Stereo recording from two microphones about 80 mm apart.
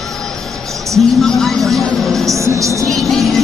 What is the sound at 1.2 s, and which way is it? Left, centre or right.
Speech, centre.